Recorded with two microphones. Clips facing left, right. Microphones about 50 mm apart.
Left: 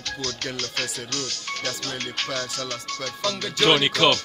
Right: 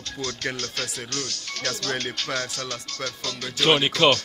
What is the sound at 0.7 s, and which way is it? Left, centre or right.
Speech, left.